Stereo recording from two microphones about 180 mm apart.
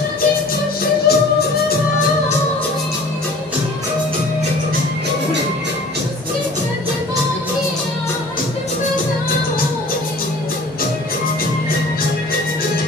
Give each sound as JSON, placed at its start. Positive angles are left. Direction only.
{"t": 1.1, "sound": "music", "side_deg": 60}